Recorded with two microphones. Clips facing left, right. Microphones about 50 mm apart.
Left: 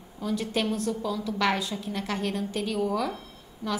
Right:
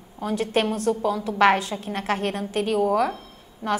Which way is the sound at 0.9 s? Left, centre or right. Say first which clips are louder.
Right 6 dB; right.